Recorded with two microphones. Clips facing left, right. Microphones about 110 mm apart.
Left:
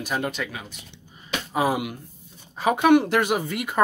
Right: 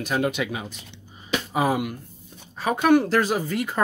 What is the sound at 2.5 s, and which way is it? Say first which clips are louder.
Speech: left 1 dB; 20° left (ahead or behind).